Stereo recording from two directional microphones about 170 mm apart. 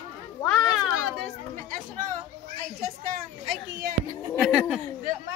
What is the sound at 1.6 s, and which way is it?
A woman's voice, 50° right (ahead or behind).